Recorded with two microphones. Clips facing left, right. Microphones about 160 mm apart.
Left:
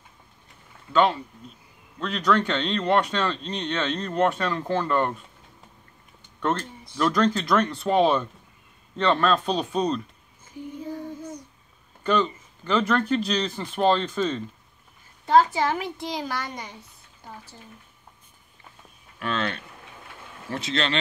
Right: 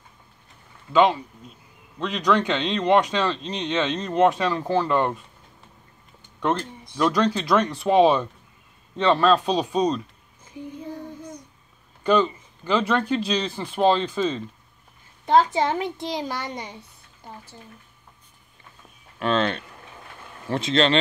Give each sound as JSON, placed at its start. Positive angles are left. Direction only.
{"t": 2.1, "sound": "speech", "side_deg": -10}
{"t": 7.0, "sound": "speech", "side_deg": -10}
{"t": 12.0, "sound": "speech", "side_deg": -10}
{"t": 15.2, "sound": "a child's voice", "side_deg": -20}
{"t": 19.1, "sound": "a child's voice", "side_deg": -25}